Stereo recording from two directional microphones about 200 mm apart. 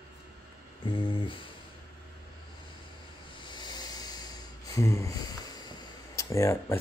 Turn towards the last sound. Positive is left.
turn(degrees=15)  # may be behind; listen again after turning